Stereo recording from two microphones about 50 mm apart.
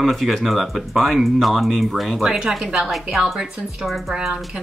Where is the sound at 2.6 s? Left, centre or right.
Centre.